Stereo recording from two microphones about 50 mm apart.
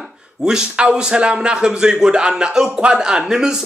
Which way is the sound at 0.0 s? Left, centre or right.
Centre.